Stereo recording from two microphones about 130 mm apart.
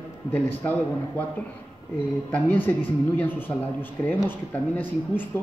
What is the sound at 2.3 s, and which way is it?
Speech, 15° left (ahead or behind).